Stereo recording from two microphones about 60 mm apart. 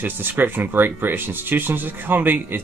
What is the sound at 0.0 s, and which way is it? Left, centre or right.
Speech, right.